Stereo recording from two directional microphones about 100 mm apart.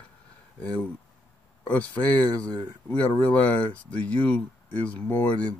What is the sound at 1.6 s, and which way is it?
Speech, 15° left (ahead or behind).